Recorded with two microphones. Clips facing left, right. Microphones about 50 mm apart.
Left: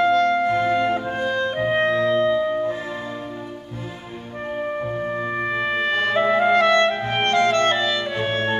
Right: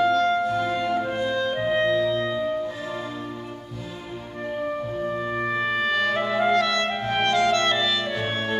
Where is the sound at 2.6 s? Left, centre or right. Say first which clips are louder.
Left 5 dB; left.